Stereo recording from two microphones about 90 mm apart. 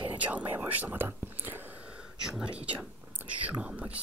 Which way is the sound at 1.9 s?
10° right (ahead or behind).